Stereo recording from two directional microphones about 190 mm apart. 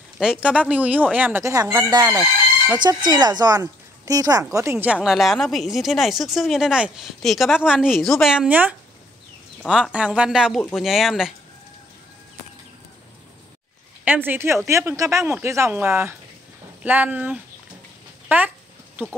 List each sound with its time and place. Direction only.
0.2 s speech: 5° right (ahead or behind)
14.0 s speech: 10° right (ahead or behind)